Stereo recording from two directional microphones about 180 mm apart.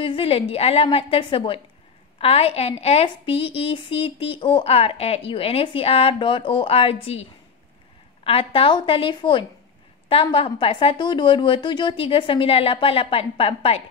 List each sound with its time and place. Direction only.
0.0 s a woman's voice: 30° left (ahead or behind)